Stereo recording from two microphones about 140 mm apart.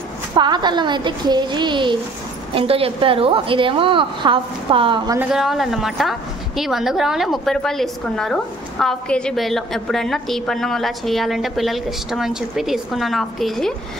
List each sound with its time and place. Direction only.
0.3 s a woman's voice: 30° right (ahead or behind)
5.3 s a woman's voice: centre (ahead or behind)